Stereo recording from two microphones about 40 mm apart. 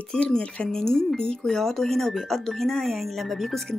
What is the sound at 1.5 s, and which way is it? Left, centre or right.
Speech, centre.